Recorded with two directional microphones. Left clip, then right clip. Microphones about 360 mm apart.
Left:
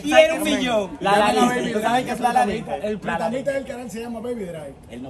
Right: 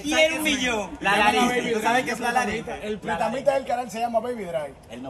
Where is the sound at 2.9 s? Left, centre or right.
Centre.